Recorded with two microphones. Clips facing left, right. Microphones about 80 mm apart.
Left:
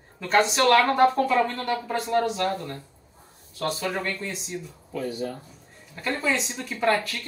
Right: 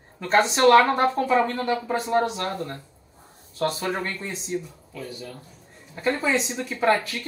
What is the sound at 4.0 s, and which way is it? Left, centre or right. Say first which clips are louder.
Speech: left 1 dB; centre.